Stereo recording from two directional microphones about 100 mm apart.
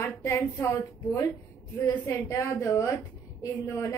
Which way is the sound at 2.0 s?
30° left (ahead or behind).